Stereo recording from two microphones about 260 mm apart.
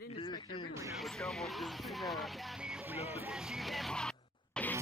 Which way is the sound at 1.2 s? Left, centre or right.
Centre.